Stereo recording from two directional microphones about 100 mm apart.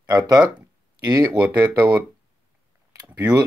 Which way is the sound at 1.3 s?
20° right (ahead or behind).